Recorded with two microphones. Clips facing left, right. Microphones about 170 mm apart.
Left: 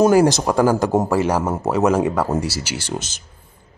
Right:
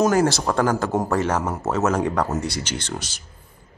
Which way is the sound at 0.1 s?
15° left (ahead or behind).